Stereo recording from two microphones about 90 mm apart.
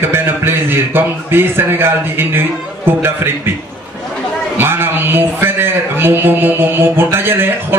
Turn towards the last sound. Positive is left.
turn(degrees=-25)  # may be behind; listen again after turning